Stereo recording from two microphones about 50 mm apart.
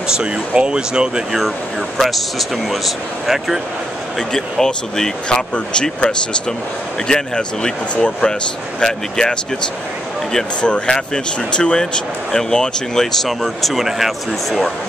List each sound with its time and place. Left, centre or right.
0.2 s speech: centre
2.0 s speech: centre
4.3 s speech: centre
10.6 s speech: centre